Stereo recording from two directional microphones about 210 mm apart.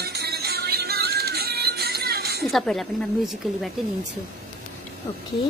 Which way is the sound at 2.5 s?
Centre (ahead or behind).